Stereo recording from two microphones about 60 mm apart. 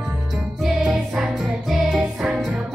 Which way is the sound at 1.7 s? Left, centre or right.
Centre.